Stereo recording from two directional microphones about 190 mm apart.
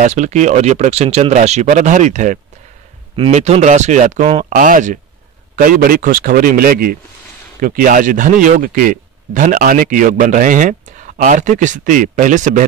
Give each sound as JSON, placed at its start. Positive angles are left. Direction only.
{"t": 0.0, "sound": "speech", "side_deg": -40}